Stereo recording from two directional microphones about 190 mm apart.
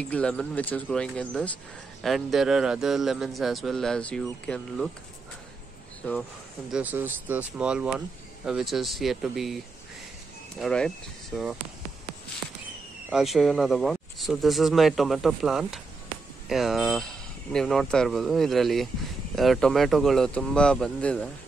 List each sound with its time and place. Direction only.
0.0 s a man's voice: 5° left (ahead or behind)
6.0 s speech: 10° left (ahead or behind)
6.7 s a man's voice: 10° right (ahead or behind)
10.6 s a man's voice: 5° left (ahead or behind)
11.3 s speech: 5° right (ahead or behind)
13.1 s a man's voice: centre (ahead or behind)